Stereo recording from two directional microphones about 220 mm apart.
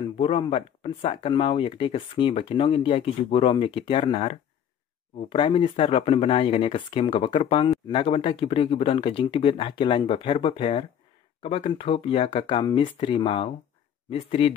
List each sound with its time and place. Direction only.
0.2 s speech: 25° left (ahead or behind)